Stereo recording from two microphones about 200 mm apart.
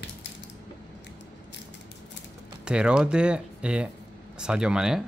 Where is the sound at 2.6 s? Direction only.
5° right (ahead or behind).